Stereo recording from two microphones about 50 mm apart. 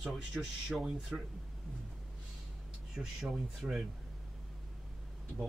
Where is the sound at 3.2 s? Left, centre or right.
Centre.